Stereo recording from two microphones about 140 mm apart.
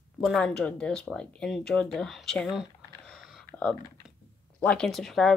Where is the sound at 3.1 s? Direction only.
5° left (ahead or behind).